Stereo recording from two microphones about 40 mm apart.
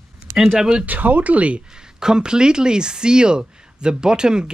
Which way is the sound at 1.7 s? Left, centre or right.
Centre.